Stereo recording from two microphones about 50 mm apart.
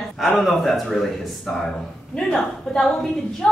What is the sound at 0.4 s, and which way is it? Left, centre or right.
A woman's voice, centre.